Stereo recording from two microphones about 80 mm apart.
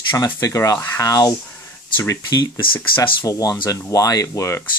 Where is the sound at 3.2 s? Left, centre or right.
Left.